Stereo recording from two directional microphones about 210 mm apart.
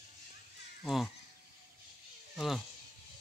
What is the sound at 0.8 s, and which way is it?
Speech, centre (ahead or behind).